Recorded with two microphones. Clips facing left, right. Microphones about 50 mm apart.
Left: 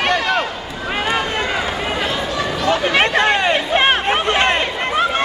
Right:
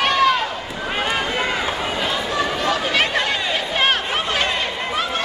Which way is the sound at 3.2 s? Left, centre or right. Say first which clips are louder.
Left 6 dB; left.